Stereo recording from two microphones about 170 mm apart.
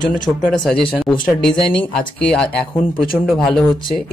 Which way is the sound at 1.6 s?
5° left (ahead or behind).